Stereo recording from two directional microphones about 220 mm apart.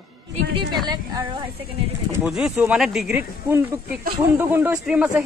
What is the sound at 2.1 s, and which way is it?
Speech, 5° right (ahead or behind).